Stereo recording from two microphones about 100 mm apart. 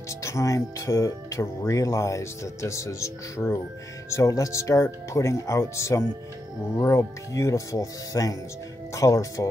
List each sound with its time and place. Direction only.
0.1 s speech: 30° left (ahead or behind)